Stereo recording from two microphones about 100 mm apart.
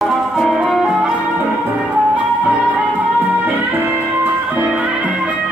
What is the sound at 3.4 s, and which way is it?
Music, 20° right (ahead or behind).